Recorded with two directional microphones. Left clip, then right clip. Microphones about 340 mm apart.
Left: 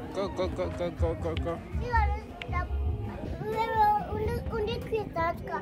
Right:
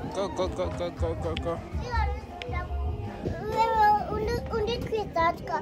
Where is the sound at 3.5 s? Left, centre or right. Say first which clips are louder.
Right 3 dB; right.